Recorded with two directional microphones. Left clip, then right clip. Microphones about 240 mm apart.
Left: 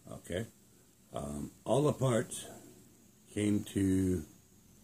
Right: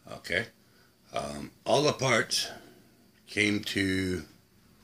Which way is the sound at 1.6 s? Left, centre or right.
Right.